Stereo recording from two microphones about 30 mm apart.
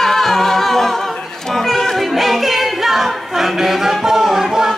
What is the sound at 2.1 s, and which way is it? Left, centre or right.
Music, centre.